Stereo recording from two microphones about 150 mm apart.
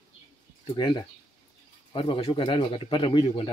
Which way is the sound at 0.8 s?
30° left (ahead or behind).